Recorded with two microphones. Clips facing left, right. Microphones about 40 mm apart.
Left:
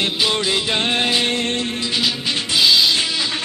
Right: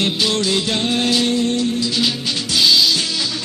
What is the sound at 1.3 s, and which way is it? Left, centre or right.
Music, left.